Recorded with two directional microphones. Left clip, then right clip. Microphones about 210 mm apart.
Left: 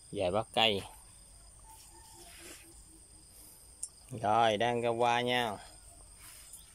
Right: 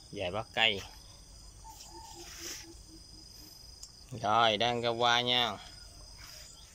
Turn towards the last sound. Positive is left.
turn(degrees=10)  # may be behind; listen again after turning